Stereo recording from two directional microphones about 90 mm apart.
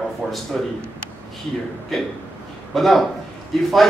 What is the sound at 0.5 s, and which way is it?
Speech, 10° left (ahead or behind).